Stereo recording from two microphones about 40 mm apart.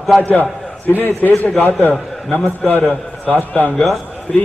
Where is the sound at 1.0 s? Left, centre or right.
Left.